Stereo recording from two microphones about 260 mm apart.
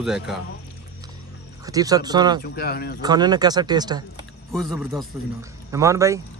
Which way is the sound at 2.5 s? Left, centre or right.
Left.